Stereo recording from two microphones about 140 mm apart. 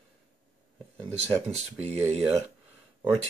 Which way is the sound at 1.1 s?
50° right (ahead or behind).